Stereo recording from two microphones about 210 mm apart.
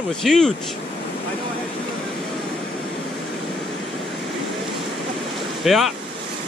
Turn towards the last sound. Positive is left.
turn(degrees=0)  # may be behind; listen again after turning